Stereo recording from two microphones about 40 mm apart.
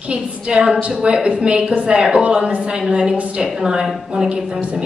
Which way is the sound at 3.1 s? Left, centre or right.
Right.